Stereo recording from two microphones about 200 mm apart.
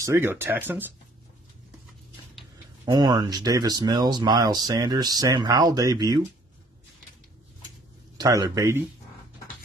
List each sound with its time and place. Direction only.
0.0 s speech: 10° right (ahead or behind)
2.8 s speech: 20° right (ahead or behind)
8.2 s speech: 15° right (ahead or behind)